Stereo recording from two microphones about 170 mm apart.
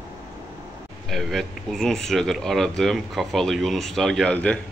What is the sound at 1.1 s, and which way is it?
Speech, centre (ahead or behind).